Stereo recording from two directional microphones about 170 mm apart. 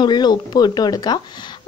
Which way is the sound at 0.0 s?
25° left (ahead or behind).